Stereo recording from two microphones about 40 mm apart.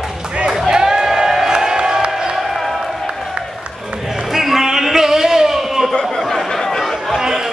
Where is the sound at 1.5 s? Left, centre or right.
Centre.